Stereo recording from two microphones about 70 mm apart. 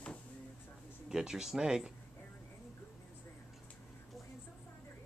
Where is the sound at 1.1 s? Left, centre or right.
Centre.